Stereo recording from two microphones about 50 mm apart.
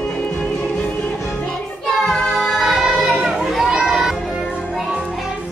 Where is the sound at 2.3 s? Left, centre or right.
Centre.